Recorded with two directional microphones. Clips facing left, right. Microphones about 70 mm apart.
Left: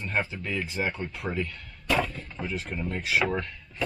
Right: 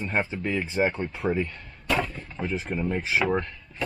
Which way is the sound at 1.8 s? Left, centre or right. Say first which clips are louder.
Even; centre.